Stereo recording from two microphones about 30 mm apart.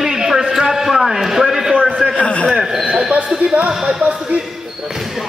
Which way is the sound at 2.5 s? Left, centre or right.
Centre.